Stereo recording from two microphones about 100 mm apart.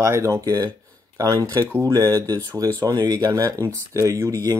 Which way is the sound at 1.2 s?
40° right (ahead or behind).